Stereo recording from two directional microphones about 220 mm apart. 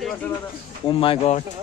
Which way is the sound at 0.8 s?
25° left (ahead or behind).